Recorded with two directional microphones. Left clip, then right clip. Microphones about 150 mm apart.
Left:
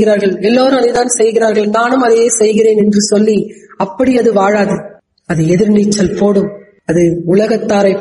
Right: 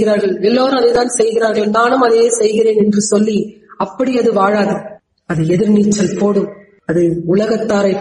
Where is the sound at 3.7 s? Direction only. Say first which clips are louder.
Left 4 dB; 20° left (ahead or behind).